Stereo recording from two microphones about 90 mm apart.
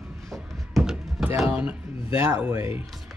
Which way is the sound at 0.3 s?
Centre (ahead or behind).